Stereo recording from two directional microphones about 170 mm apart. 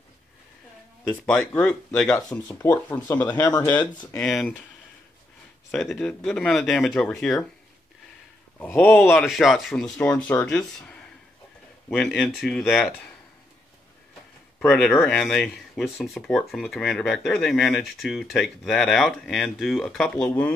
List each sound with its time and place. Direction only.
1.1 s speech: 5° left (ahead or behind)
2.0 s speech: 20° left (ahead or behind)
3.3 s speech: 25° left (ahead or behind)
4.2 s speech: 5° left (ahead or behind)
5.7 s speech: centre (ahead or behind)
8.5 s speech: 10° left (ahead or behind)
9.2 s speech: centre (ahead or behind)
10.8 s a sound: 5° left (ahead or behind)
11.9 s speech: 5° left (ahead or behind)
14.6 s speech: centre (ahead or behind)